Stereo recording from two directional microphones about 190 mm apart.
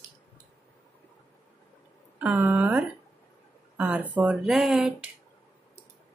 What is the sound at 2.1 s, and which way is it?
Speech, 10° right (ahead or behind).